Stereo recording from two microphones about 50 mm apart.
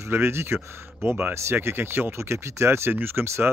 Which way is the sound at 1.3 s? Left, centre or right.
Right.